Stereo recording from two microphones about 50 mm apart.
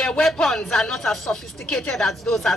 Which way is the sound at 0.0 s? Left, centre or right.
Centre.